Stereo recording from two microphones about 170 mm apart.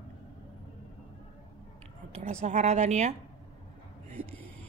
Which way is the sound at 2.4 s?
45° right (ahead or behind).